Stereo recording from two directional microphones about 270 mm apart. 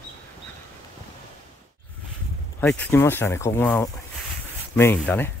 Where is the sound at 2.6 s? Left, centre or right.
Centre.